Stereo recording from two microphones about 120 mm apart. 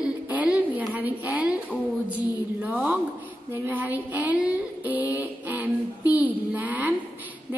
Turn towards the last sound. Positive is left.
turn(degrees=-15)  # may be behind; listen again after turning